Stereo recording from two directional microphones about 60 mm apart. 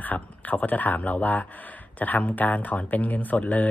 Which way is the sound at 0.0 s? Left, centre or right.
Left.